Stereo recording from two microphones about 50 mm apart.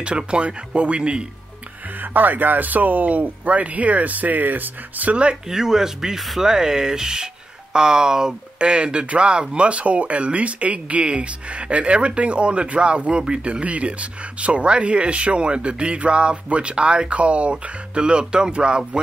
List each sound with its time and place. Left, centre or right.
0.0 s speech: right
2.1 s speech: right
5.1 s speech: right
5.5 s speech: centre